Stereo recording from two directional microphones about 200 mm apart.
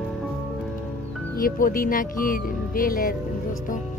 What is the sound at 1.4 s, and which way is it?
Speech, 45° left (ahead or behind).